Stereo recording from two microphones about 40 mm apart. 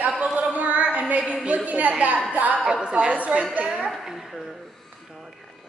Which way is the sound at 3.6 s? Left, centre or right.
Right.